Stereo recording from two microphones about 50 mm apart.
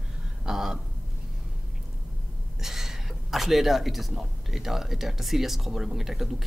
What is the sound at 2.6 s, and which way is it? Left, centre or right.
A man's voice, centre.